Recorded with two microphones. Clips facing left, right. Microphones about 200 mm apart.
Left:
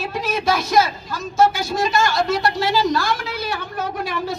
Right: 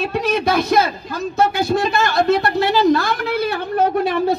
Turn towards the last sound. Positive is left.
turn(degrees=-60)  # may be behind; listen again after turning